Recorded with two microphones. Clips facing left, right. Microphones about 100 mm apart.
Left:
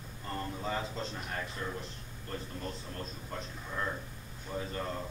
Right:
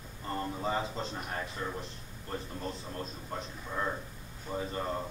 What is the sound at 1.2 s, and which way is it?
A man's voice, 20° right (ahead or behind).